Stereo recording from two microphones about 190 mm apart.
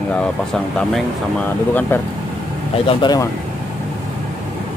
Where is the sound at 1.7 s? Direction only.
10° left (ahead or behind).